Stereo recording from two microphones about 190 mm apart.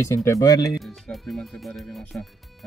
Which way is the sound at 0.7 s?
Centre (ahead or behind).